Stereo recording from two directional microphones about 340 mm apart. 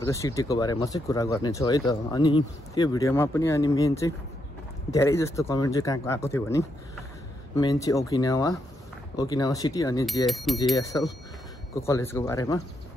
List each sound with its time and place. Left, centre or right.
0.0 s speech: centre
10.2 s speech: centre